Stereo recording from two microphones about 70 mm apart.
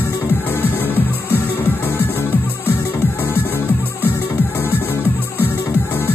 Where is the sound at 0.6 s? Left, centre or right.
Left.